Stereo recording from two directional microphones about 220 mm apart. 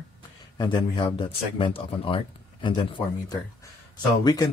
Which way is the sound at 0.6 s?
20° left (ahead or behind).